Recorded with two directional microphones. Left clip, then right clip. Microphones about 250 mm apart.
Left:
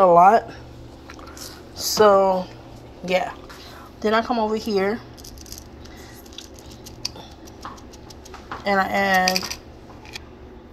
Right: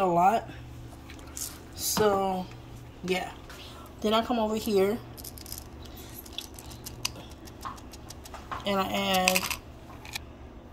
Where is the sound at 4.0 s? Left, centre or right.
Left.